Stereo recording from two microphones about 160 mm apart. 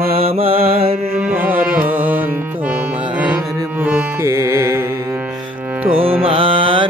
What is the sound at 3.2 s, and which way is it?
Music, 10° right (ahead or behind).